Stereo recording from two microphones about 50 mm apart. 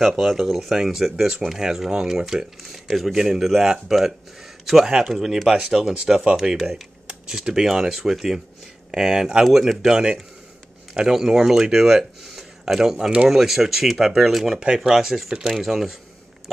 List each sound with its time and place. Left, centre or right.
0.2 s speech: centre
6.5 s speech: centre